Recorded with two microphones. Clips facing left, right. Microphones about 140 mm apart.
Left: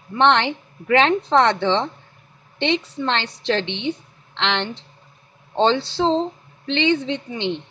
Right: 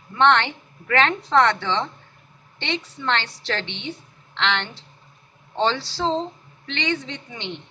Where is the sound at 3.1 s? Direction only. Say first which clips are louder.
Left 3 dB; 20° left (ahead or behind).